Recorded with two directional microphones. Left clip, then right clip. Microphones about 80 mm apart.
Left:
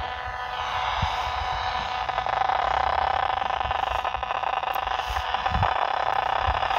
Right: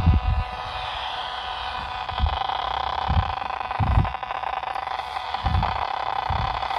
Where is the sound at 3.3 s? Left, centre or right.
Right.